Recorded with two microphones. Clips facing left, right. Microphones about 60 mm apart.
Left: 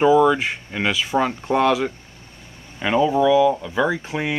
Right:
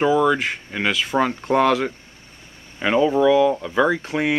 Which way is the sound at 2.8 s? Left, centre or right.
Centre.